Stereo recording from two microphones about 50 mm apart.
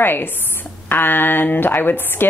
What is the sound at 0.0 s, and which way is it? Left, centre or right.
A woman's voice, left.